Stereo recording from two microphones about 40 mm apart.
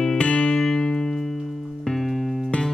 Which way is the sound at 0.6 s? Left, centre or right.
Centre.